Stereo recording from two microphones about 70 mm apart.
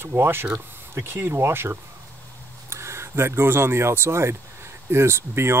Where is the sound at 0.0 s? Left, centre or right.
Right.